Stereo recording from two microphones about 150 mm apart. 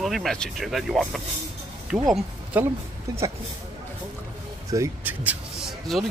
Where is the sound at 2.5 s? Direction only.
10° right (ahead or behind).